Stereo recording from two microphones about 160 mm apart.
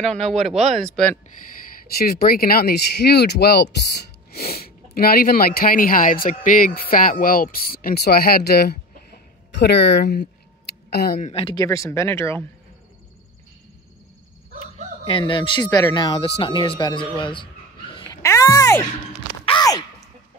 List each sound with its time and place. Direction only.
0.0 s speech: 5° left (ahead or behind)
1.9 s speech: 75° left (ahead or behind); by 10.2 s 90° left
10.9 s speech: 80° left
11.1 s speech: 45° left (ahead or behind)
11.4 s speech: 20° left (ahead or behind)
15.0 s speech: 30° left (ahead or behind)
17.9 s a sound: 20° left (ahead or behind)